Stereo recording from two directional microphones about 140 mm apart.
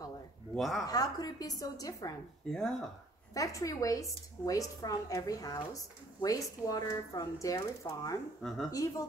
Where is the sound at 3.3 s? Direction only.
25° left (ahead or behind).